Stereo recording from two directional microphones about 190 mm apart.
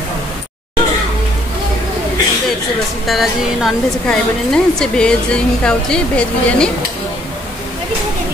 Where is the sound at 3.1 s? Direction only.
Centre (ahead or behind).